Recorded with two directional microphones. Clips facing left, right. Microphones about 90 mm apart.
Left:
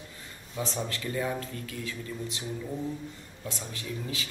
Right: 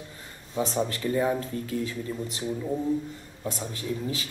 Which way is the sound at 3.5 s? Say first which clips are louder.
Right 6 dB; 35° right (ahead or behind).